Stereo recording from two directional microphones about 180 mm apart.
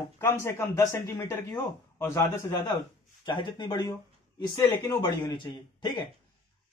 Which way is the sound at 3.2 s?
25° left (ahead or behind).